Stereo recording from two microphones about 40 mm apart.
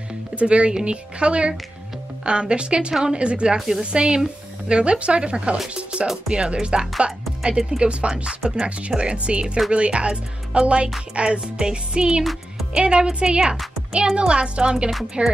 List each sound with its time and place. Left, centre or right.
0.4 s speech: right
3.5 s speech: centre
3.8 s speech: right
5.8 s music: right
6.2 s speech: right
8.3 s speech: centre
12.2 s music: centre
12.7 s speech: right